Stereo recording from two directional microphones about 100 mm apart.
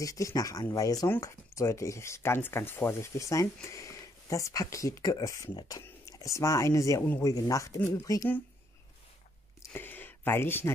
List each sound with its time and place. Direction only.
0.0 s speech: 35° left (ahead or behind)
9.7 s speech: 20° left (ahead or behind)